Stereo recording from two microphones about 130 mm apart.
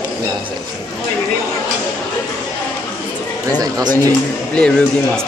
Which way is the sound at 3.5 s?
30° right (ahead or behind).